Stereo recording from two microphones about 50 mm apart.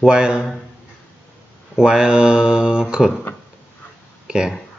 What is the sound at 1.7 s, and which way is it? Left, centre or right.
Speech, centre.